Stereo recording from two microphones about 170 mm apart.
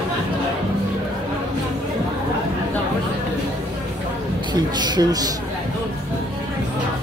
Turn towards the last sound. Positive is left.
turn(degrees=-25)  # may be behind; listen again after turning